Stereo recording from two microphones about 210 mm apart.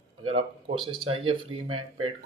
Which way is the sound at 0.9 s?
25° right (ahead or behind).